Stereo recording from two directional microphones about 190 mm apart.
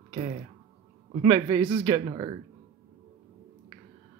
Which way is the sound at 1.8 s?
15° right (ahead or behind).